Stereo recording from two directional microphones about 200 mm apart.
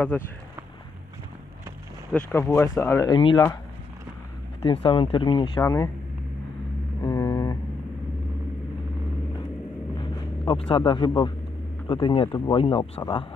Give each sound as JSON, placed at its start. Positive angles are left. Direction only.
{"t": 2.1, "sound": "speech", "side_deg": 10}
{"t": 4.6, "sound": "speech", "side_deg": 25}
{"t": 7.0, "sound": "vehicle", "side_deg": 20}
{"t": 9.9, "sound": "vehicle", "side_deg": 20}
{"t": 11.9, "sound": "speech", "side_deg": 25}